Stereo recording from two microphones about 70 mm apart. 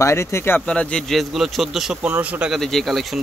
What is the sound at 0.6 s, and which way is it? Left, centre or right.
Speech, centre.